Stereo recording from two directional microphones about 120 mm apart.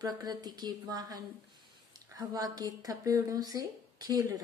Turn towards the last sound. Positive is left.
turn(degrees=-30)  # may be behind; listen again after turning